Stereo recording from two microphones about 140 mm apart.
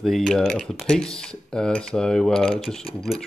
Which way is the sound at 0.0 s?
Centre (ahead or behind).